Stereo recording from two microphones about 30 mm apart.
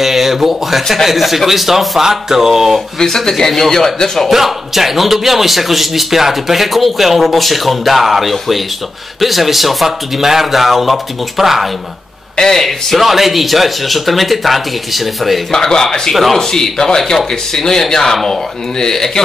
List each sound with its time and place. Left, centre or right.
0.0 s speech: centre
2.0 s a sound: centre
3.2 s speech: centre
4.3 s speech: centre
12.4 s speech: centre
13.0 s speech: centre
15.5 s speech: centre